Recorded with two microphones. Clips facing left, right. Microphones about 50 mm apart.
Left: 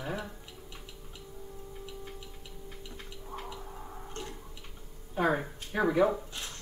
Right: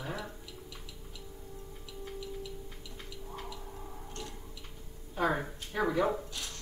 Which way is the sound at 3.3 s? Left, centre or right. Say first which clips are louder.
Left 3 dB; left.